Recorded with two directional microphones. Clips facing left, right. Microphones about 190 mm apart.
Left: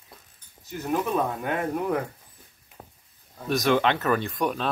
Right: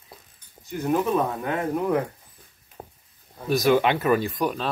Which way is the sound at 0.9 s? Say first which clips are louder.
Right 2 dB; centre (ahead or behind).